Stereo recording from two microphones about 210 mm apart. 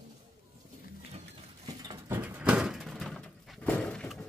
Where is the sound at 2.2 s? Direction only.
5° right (ahead or behind).